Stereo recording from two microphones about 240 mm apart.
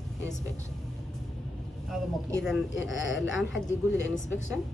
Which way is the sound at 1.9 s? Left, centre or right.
Centre.